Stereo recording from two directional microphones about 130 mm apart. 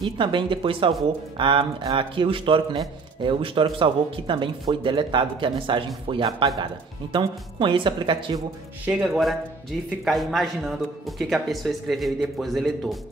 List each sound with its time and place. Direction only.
0.0 s a man's voice: 40° right (ahead or behind)
8.8 s speech: 5° right (ahead or behind)